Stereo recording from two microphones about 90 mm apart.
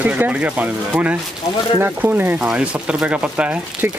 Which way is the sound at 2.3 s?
10° right (ahead or behind).